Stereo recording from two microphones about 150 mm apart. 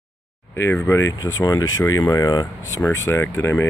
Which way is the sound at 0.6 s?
15° left (ahead or behind).